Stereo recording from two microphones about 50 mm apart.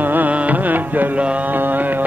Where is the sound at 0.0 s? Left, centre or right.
Right.